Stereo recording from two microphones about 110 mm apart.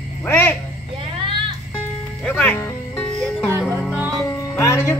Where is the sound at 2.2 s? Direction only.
10° left (ahead or behind).